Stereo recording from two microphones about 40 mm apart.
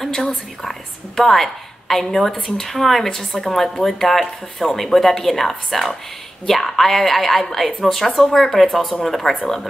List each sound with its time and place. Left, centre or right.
0.0 s a woman's voice: centre